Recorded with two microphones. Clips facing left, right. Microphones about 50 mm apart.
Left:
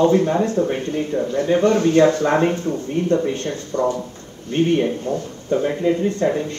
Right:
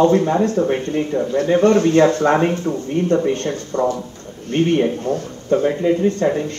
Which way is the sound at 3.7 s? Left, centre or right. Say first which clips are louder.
Even; right.